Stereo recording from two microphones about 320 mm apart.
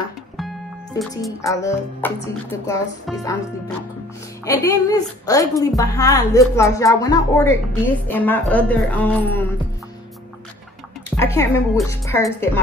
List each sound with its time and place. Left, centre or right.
1.4 s speech: centre
4.5 s speech: centre
11.1 s speech: centre